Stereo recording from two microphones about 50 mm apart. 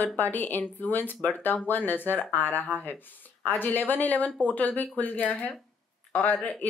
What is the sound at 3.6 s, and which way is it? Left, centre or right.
Speech, left.